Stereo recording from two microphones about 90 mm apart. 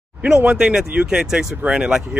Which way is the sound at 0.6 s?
5° right (ahead or behind).